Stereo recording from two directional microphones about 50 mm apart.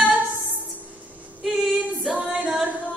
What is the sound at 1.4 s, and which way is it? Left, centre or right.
Female singing, centre.